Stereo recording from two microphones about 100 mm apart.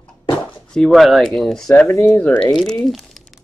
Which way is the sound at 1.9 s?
25° left (ahead or behind).